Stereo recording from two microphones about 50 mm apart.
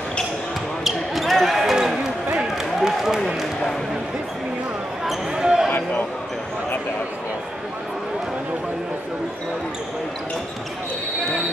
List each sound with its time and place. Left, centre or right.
0.8 s basketball bounce: centre
2.3 s a sound: centre
5.0 s basketball bounce: centre
5.7 s basketball bounce: left